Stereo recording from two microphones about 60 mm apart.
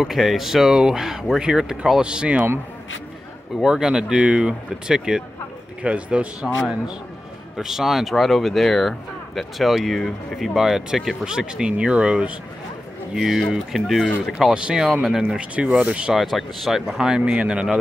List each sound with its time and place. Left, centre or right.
0.0 s speech: centre
3.6 s speech: centre
5.8 s speech: right
7.5 s speech: centre
13.1 s speech: centre
14.4 s speech: centre
16.1 s speech: centre
17.2 s speech: centre